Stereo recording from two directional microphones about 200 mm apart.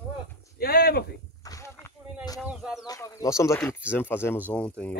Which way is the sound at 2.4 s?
Centre (ahead or behind).